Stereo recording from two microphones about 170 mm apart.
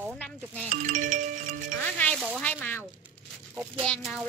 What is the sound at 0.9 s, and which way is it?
Music, 50° right (ahead or behind).